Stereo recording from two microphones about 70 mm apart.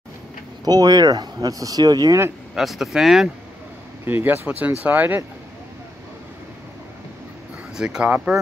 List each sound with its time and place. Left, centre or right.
0.7 s speech: right
2.5 s speech: centre
4.0 s speech: right
7.7 s speech: centre